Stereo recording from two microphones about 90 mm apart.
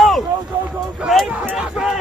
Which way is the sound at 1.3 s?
15° right (ahead or behind).